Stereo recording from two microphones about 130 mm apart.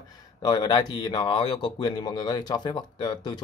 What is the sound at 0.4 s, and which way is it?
A man's voice, 30° left (ahead or behind).